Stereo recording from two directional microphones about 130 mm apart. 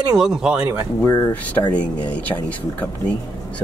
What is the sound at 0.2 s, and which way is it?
Speech, 5° right (ahead or behind).